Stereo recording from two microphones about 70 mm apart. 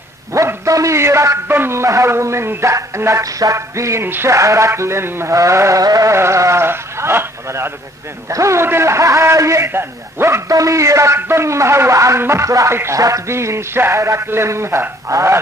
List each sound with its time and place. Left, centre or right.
0.3 s dog: right
1.5 s speech: right
5.3 s speech: right
6.1 s sheep: right
8.3 s speech: right
9.7 s a man's voice: right
10.5 s speech: right
11.1 s speech: right